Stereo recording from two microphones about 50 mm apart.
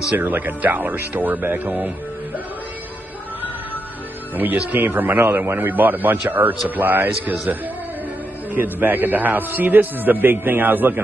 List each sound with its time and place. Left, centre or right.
0.2 s a man's voice: right
4.4 s a man's voice: right
8.5 s a man's voice: right